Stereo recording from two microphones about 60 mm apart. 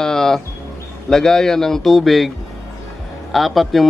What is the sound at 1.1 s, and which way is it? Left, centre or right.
Speech, centre.